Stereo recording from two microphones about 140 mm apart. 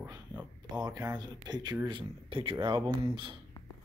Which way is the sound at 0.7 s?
30° right (ahead or behind).